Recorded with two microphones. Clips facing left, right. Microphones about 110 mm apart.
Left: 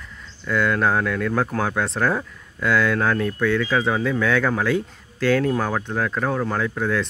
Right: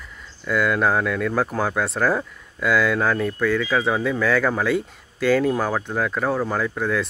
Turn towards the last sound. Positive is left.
turn(degrees=0)  # may be behind; listen again after turning